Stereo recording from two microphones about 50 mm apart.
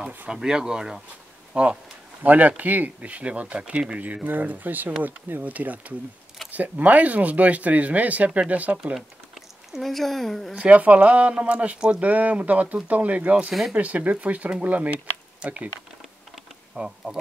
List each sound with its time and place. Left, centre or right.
0.3 s speech: centre
1.5 s speech: right
8.9 s speech: centre
10.6 s speech: right
16.7 s bee: centre